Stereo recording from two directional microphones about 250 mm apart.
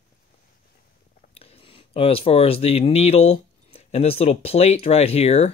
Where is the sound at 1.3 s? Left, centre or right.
Left.